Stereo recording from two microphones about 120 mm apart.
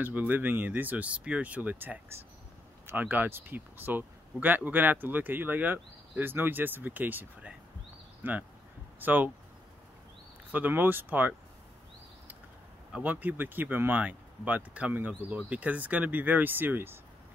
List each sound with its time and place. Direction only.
0.0 s speech: 15° right (ahead or behind)
10.5 s speech: 15° right (ahead or behind)
12.9 s speech: 15° right (ahead or behind)